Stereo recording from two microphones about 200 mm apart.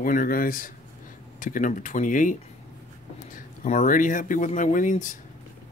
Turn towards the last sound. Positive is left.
turn(degrees=40)  # may be behind; listen again after turning